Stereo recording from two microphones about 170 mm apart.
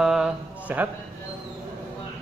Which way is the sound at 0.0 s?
5° right (ahead or behind).